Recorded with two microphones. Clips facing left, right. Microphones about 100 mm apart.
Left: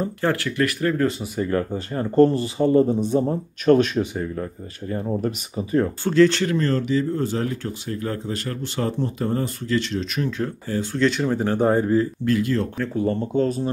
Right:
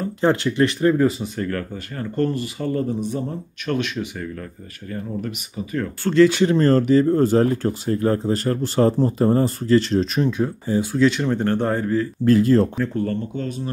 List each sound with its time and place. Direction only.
0.2 s speech: 20° right (ahead or behind)
1.2 s speech: 10° left (ahead or behind)
1.5 s speech: 25° left (ahead or behind)
6.1 s speech: 5° right (ahead or behind)
6.6 s speech: 45° right (ahead or behind)
10.2 s speech: 15° right (ahead or behind)
11.1 s speech: 5° left (ahead or behind)
11.8 s speech: 30° left (ahead or behind)
12.3 s speech: 35° right (ahead or behind)
12.9 s speech: 20° left (ahead or behind)
13.3 s speech: 35° left (ahead or behind)